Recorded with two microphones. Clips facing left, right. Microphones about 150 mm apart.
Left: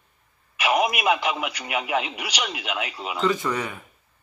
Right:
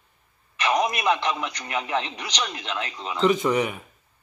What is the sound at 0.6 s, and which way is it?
Speech, 10° left (ahead or behind).